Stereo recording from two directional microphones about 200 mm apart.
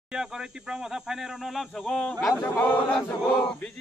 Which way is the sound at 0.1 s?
5° right (ahead or behind).